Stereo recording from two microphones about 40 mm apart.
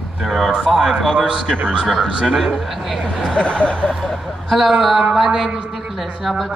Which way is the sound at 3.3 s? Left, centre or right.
Left.